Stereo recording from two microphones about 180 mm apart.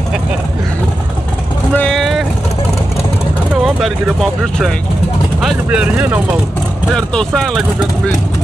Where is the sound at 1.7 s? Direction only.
Centre (ahead or behind).